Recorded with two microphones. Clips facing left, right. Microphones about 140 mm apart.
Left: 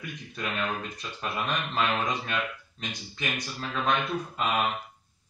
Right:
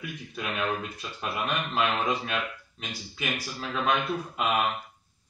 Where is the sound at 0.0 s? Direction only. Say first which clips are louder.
Even; 5° right (ahead or behind).